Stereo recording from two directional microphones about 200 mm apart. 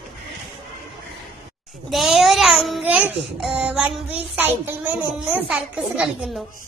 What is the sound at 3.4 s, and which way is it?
Speech, 5° right (ahead or behind).